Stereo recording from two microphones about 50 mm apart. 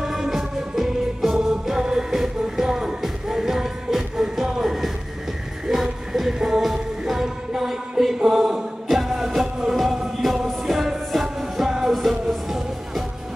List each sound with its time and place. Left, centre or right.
0.0 s music: centre